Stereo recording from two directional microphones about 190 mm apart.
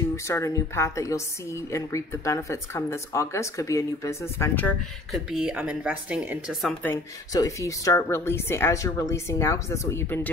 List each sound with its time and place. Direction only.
0.1 s a woman's voice: 15° left (ahead or behind)
5.1 s speech: 5° right (ahead or behind)
6.8 s a woman's voice: 15° left (ahead or behind)